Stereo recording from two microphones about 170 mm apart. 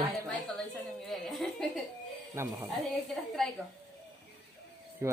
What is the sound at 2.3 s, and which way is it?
Speech, 15° right (ahead or behind).